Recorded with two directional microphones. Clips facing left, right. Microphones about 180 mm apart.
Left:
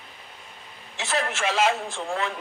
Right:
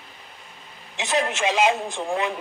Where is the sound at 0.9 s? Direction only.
15° right (ahead or behind).